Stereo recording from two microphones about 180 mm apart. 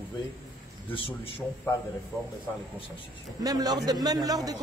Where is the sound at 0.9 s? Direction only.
30° left (ahead or behind).